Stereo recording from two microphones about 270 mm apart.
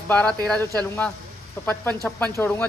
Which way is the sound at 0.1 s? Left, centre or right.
Centre.